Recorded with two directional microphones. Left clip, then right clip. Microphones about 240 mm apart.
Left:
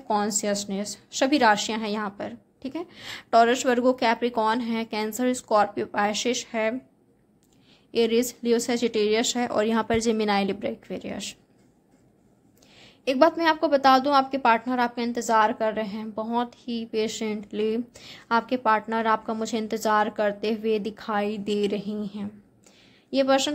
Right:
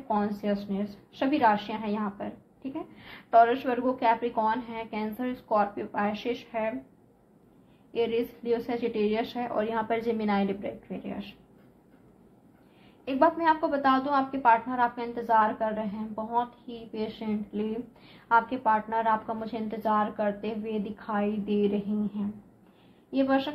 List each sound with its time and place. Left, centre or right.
0.1 s a woman's voice: left
7.9 s a woman's voice: left
13.0 s a woman's voice: left